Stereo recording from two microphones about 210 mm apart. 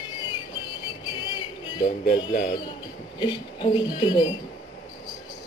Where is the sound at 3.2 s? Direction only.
20° left (ahead or behind).